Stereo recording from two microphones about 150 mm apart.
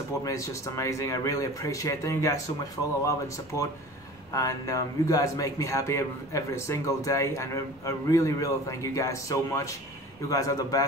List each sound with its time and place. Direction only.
0.2 s a man's voice: 20° left (ahead or behind)